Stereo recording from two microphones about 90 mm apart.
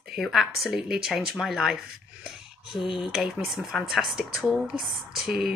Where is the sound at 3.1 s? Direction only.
Centre (ahead or behind).